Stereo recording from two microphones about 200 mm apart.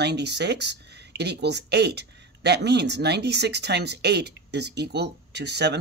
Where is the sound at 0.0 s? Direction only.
55° right (ahead or behind).